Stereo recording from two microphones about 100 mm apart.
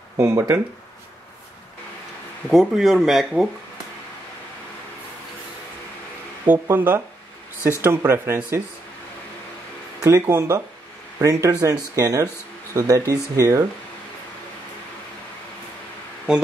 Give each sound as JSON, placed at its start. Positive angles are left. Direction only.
{"t": 0.2, "sound": "speech", "side_deg": -30}
{"t": 2.5, "sound": "speech", "side_deg": -5}
{"t": 6.4, "sound": "speech", "side_deg": -20}
{"t": 10.0, "sound": "speech", "side_deg": -30}